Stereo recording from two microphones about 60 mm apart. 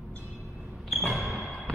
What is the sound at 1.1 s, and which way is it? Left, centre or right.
Music, centre.